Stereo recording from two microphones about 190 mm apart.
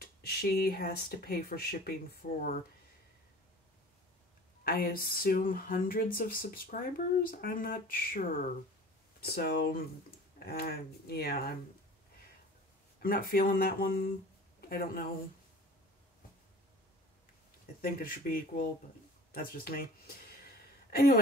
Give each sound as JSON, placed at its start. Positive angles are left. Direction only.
{"t": 0.0, "sound": "speech", "side_deg": 55}
{"t": 4.6, "sound": "speech", "side_deg": 50}
{"t": 13.0, "sound": "speech", "side_deg": 50}
{"t": 17.8, "sound": "speech", "side_deg": 50}